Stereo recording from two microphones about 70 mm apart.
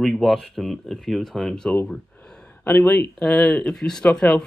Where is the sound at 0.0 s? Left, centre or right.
Centre.